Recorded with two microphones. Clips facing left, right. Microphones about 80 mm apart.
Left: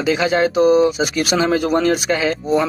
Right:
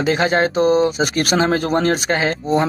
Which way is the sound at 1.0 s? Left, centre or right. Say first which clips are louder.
Even; right.